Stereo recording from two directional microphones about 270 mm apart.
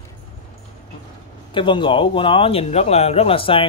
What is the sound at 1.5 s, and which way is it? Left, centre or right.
Speech, centre.